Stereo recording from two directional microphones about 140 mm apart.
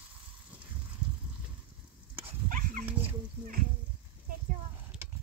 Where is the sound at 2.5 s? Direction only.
75° right (ahead or behind).